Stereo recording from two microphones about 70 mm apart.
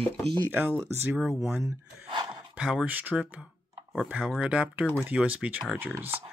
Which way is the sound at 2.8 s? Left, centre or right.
Right.